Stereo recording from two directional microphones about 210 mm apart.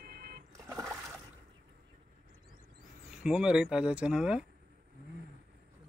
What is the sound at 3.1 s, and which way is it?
Speech, 5° right (ahead or behind).